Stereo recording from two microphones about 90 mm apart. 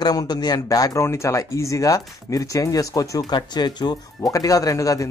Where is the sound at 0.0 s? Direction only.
50° left (ahead or behind).